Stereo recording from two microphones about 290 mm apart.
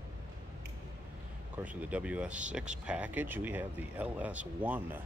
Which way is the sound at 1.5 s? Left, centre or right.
Centre.